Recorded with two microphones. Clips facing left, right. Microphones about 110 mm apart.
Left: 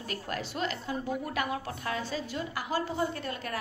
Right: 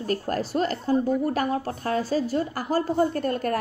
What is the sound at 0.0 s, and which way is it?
A woman's voice, 40° right (ahead or behind).